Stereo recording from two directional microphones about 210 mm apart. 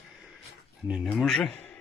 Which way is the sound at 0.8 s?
Centre (ahead or behind).